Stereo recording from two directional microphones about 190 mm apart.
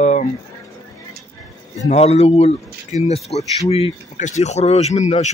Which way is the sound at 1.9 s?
35° left (ahead or behind).